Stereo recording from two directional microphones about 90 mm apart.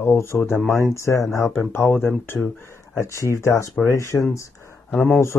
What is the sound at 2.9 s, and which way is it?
Speech, 35° left (ahead or behind).